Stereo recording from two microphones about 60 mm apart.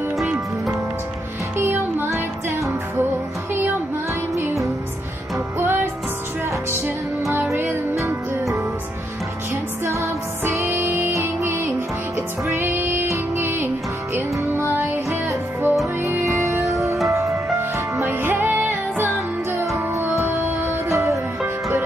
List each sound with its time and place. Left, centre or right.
1.6 s music: right
5.6 s music: right
7.9 s music: right
9.8 s music: right
17.1 s music: right
18.4 s music: right
19.1 s music: right